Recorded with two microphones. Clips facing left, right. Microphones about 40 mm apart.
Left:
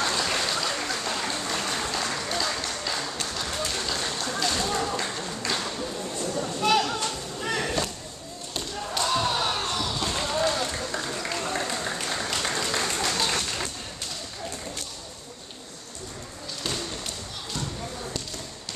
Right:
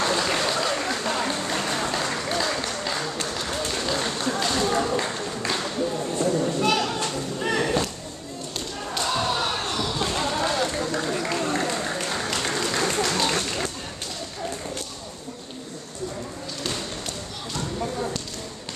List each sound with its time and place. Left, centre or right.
0.0 s applause: centre
3.3 s run: centre
6.6 s children playing: centre
7.4 s music: centre
8.9 s basketball bounce: centre
10.0 s a sound: centre
10.9 s applause: centre